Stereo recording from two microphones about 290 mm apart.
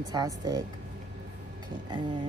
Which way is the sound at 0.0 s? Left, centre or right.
Centre.